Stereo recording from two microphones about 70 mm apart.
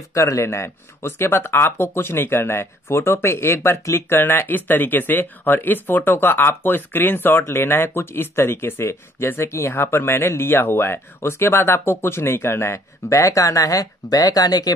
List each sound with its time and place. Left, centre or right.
0.1 s speech: left